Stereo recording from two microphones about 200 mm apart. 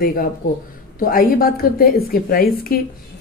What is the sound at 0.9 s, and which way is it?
A woman's voice, 45° left (ahead or behind).